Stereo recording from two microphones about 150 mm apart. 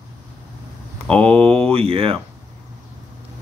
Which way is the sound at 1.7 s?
40° right (ahead or behind).